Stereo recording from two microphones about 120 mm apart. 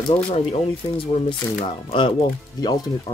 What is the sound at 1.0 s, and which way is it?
Speech, 45° left (ahead or behind).